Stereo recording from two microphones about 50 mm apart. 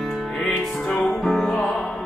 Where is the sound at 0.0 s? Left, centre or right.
Centre.